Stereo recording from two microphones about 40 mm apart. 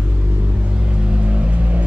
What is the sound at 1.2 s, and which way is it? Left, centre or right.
Vehicle, right.